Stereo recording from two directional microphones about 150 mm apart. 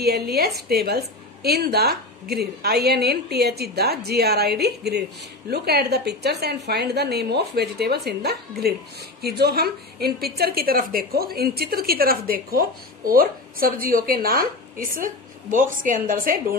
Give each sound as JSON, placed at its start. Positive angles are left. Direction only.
{"t": 0.0, "sound": "a woman's voice", "side_deg": -90}